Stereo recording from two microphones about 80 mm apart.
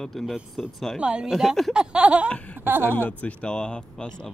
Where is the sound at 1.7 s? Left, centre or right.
Centre.